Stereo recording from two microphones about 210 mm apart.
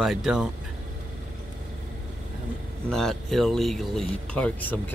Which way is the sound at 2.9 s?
Centre (ahead or behind).